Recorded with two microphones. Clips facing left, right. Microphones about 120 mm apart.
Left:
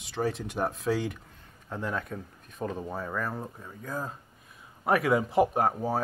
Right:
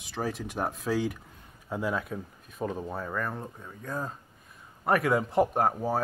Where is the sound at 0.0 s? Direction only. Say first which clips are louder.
Left 2 dB; centre (ahead or behind).